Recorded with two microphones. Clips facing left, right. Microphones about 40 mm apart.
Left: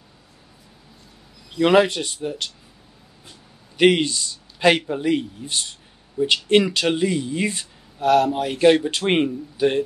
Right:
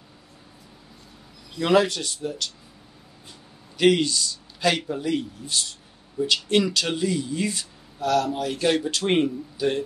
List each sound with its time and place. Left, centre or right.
1.6 s speech: left
3.7 s speech: left